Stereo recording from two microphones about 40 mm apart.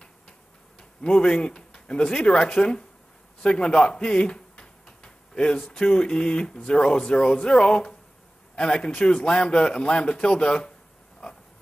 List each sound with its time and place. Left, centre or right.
0.7 s speech: left
3.4 s a sound: left
5.7 s speech: left